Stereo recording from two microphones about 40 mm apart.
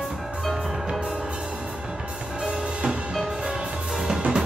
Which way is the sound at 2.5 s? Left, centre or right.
Right.